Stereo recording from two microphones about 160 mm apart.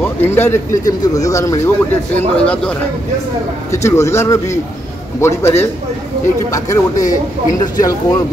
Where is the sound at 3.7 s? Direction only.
20° left (ahead or behind).